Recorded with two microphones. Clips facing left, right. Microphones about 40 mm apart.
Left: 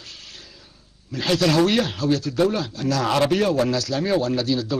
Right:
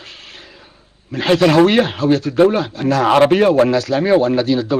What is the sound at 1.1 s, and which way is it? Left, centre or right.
Speech, right.